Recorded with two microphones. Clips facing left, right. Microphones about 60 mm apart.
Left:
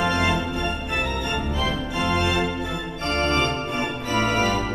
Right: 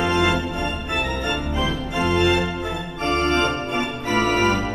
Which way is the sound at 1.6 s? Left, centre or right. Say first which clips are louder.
Right 2 dB; right.